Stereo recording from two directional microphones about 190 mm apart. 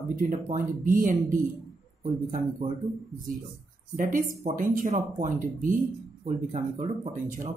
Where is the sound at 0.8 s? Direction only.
45° right (ahead or behind).